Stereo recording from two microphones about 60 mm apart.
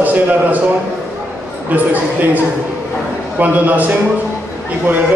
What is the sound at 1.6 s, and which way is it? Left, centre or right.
Speech, right.